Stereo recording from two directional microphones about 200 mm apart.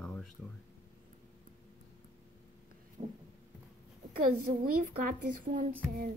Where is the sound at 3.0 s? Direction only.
35° right (ahead or behind).